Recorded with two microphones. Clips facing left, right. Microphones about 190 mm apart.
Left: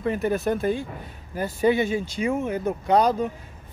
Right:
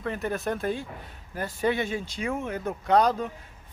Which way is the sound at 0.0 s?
10° left (ahead or behind).